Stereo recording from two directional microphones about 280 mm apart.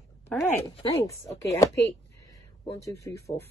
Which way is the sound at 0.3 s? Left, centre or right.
Centre.